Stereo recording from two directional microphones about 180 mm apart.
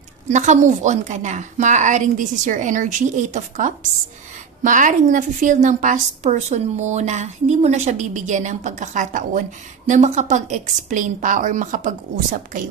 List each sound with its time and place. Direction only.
0.3 s a woman's voice: 40° right (ahead or behind)